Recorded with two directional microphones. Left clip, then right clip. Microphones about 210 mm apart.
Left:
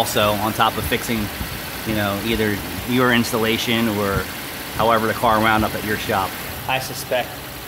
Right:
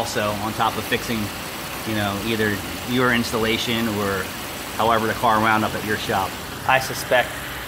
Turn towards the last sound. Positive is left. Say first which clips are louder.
# right 3 dB
turn(degrees=-10)  # may be behind; listen again after turning